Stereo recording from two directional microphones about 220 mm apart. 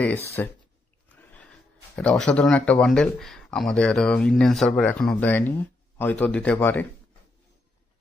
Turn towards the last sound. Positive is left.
turn(degrees=10)  # may be behind; listen again after turning